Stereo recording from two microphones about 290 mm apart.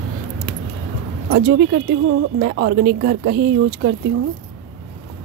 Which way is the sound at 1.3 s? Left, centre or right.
Right.